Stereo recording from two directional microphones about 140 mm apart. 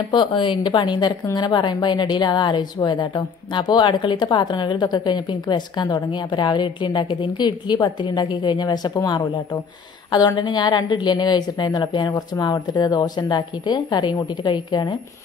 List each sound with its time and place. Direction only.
0.1 s a woman's voice: 35° left (ahead or behind)